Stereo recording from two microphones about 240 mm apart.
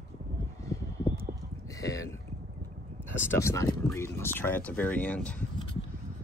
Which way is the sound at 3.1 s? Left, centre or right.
Centre.